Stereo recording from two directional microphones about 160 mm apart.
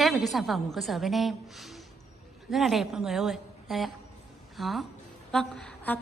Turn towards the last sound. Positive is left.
turn(degrees=5)  # may be behind; listen again after turning